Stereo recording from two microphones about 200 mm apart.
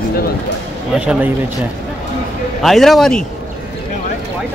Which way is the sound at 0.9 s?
5° right (ahead or behind).